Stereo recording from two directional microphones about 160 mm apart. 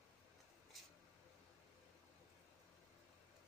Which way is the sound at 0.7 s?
Centre (ahead or behind).